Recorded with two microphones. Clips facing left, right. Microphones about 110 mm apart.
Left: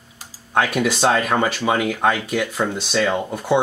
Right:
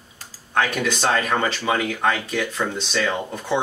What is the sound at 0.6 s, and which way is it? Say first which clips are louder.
Speech: left 3 dB; 5° left (ahead or behind).